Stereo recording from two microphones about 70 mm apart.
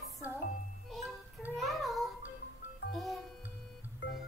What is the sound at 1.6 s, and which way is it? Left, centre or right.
Child singing, centre.